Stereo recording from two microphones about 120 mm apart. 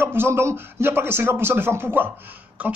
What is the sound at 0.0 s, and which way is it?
Speech, 20° right (ahead or behind).